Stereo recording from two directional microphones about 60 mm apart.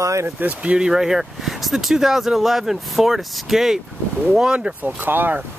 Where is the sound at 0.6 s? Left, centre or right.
Right.